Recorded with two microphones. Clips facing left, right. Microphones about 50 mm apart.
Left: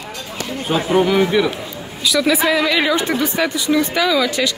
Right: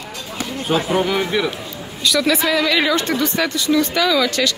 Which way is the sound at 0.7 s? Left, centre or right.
Centre.